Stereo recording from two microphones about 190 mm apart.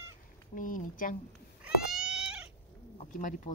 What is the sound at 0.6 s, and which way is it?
Speech, 45° left (ahead or behind).